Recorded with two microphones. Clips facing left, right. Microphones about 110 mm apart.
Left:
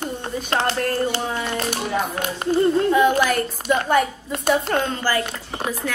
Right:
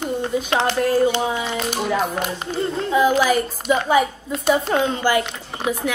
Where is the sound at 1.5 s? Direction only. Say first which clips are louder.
Even; 50° left (ahead or behind).